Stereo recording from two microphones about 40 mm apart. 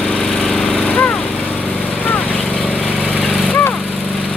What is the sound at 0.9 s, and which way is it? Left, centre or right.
Lawn mower, left.